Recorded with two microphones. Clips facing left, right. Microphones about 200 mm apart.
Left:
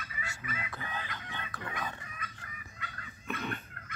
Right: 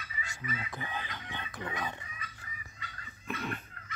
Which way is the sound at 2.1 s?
55° left (ahead or behind).